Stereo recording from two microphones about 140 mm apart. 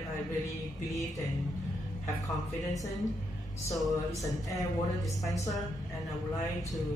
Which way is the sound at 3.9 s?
25° left (ahead or behind).